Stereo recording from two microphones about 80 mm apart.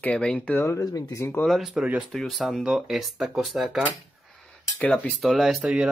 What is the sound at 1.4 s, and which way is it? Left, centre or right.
Speech, centre.